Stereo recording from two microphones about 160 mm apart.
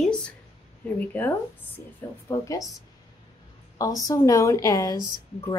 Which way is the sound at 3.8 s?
20° left (ahead or behind).